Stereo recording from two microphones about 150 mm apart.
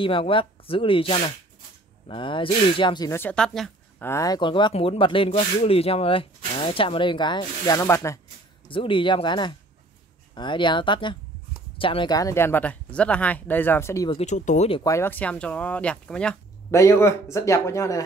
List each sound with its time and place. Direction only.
0.0 s speech: 35° left (ahead or behind)
3.1 s speech: 15° left (ahead or behind)
4.0 s speech: 20° left (ahead or behind)
8.6 s speech: 35° left (ahead or behind); by 14.0 s 15° left (ahead or behind)
14.1 s speech: 50° left (ahead or behind)
14.7 s speech: 25° left (ahead or behind); by 16.3 s 5° left (ahead or behind)
16.7 s speech: 20° left (ahead or behind)